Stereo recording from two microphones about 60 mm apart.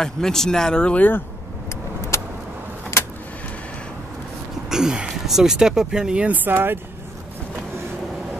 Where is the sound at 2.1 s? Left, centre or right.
Left.